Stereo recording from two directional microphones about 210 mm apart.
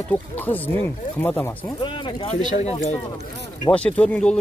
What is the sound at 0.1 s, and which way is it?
Speech, 10° left (ahead or behind).